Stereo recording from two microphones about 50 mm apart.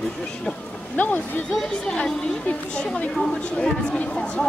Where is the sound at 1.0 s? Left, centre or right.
Left.